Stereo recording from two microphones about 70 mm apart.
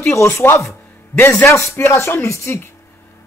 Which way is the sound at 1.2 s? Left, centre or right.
Left.